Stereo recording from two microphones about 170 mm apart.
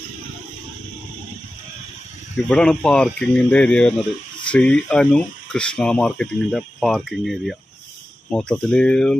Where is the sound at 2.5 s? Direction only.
5° left (ahead or behind).